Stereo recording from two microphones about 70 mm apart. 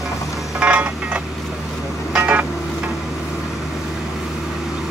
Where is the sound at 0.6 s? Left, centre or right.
Centre.